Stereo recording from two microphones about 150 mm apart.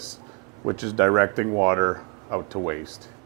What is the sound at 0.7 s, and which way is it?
Speech, 20° right (ahead or behind).